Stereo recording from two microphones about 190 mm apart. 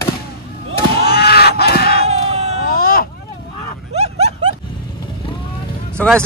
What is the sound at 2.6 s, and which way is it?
Baby cry, 50° left (ahead or behind).